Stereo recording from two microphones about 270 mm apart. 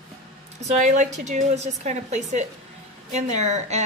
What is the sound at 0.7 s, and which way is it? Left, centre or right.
A woman's voice, right.